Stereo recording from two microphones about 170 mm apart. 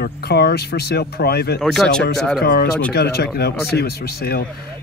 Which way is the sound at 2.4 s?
70° left (ahead or behind).